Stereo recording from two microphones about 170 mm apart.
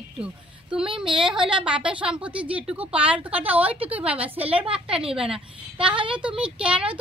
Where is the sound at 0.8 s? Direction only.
30° right (ahead or behind).